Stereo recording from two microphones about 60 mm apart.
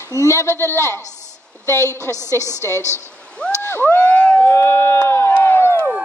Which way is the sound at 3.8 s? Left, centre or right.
Left.